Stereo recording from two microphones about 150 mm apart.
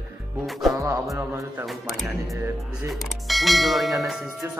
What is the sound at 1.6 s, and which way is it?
Speech, centre (ahead or behind).